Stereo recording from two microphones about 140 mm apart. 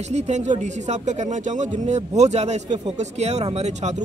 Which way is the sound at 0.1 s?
55° right (ahead or behind).